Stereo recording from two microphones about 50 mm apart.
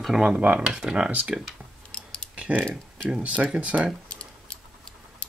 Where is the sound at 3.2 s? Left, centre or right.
Right.